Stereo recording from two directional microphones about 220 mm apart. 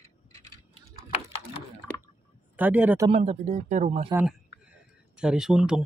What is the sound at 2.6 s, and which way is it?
Speech, 5° right (ahead or behind).